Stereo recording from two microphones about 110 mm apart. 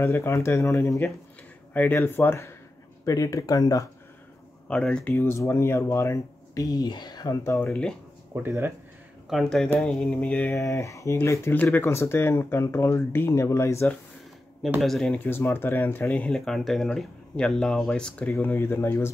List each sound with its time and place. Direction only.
0.0 s speech: 25° left (ahead or behind)
4.6 s speech: 10° left (ahead or behind); by 7.3 s 35° left (ahead or behind)
7.4 s speech: 25° left (ahead or behind)
8.4 s speech: 20° right (ahead or behind)
9.3 s speech: centre (ahead or behind)
10.5 s speech: 25° left (ahead or behind)
14.8 s speech: 5° left (ahead or behind)
15.1 s speech: 20° left (ahead or behind)
18.3 s speech: 20° left (ahead or behind)